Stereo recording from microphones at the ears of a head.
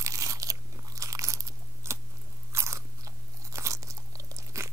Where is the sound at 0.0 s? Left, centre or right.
Right.